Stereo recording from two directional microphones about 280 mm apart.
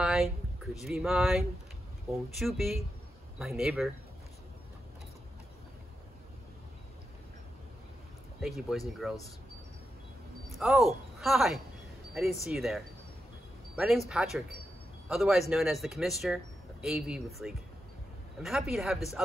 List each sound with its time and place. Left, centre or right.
0.0 s a sound: centre
0.8 s speech: centre
8.4 s speech: centre
10.5 s speech: centre